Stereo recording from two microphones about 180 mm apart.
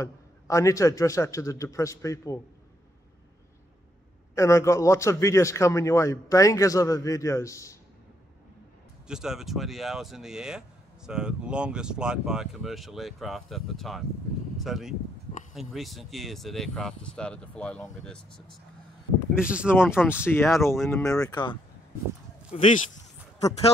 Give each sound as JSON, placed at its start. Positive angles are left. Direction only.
{"t": 0.0, "sound": "a man's voice", "side_deg": 15}
{"t": 4.4, "sound": "a man's voice", "side_deg": 15}
{"t": 9.0, "sound": "speech", "side_deg": -5}
{"t": 19.7, "sound": "a man's voice", "side_deg": 10}
{"t": 22.5, "sound": "speech", "side_deg": 35}